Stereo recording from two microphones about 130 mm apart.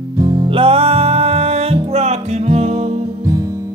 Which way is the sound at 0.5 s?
45° right (ahead or behind).